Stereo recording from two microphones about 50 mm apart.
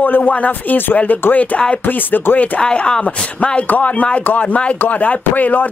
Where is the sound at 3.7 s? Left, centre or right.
Left.